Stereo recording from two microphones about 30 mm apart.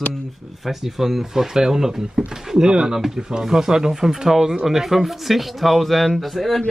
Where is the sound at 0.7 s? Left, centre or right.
Centre.